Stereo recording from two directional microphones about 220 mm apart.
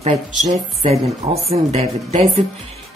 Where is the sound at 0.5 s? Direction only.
30° right (ahead or behind).